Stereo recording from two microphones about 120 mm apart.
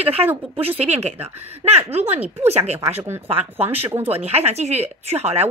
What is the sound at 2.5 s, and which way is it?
Speech, 65° right (ahead or behind).